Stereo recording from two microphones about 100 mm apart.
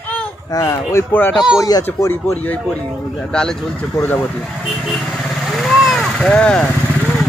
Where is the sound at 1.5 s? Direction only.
40° left (ahead or behind).